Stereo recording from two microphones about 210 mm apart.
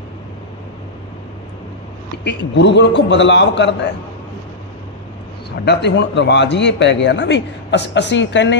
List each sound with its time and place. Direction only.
2.2 s speech: 55° left (ahead or behind)
5.7 s speech: 55° left (ahead or behind)